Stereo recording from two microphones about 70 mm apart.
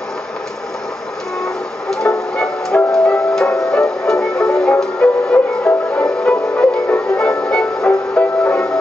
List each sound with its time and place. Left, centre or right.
1.4 s music: centre